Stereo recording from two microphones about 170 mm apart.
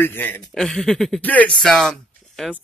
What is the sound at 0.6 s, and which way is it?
Speech, centre (ahead or behind).